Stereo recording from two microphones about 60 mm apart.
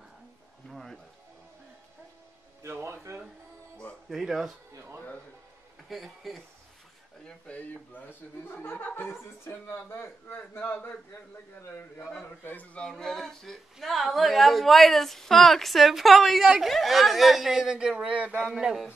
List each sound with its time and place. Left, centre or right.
0.7 s music: centre
2.7 s speech: right
4.1 s speech: centre
5.9 s speech: centre
7.2 s a man's voice: left
12.7 s speech: centre; by 18.4 s right
18.5 s speech: centre